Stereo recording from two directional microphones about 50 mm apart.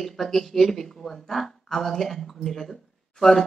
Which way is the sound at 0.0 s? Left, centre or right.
Centre.